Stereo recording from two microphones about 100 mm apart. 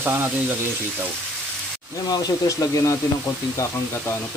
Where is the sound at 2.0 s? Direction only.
40° left (ahead or behind).